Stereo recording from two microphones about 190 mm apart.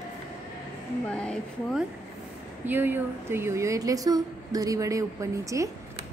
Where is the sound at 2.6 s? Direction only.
10° right (ahead or behind).